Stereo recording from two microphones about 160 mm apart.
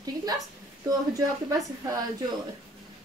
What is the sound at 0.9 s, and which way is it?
A woman's voice, 20° right (ahead or behind).